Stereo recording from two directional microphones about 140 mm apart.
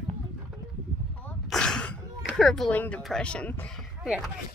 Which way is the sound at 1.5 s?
5° left (ahead or behind).